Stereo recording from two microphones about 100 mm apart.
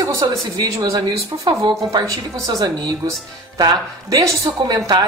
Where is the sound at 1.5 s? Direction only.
45° right (ahead or behind).